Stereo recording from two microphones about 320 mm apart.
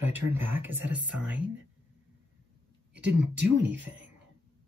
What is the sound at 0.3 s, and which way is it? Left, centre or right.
Music, centre.